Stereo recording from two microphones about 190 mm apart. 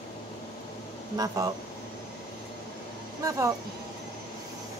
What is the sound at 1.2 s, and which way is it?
Speech, 20° right (ahead or behind).